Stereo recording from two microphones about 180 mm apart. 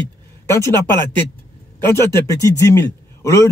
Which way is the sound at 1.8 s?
15° left (ahead or behind).